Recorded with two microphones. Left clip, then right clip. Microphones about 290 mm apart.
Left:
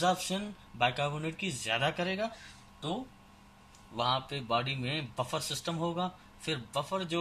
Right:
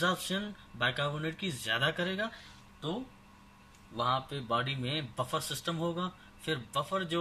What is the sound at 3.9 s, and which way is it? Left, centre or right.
Speech, centre.